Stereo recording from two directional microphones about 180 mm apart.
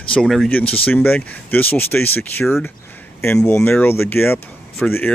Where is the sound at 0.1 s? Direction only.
Centre (ahead or behind).